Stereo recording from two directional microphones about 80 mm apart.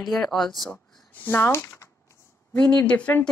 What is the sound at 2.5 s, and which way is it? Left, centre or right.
Speech, centre.